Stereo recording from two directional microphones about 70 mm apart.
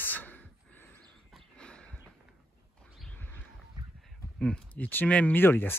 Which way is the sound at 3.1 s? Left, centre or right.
Left.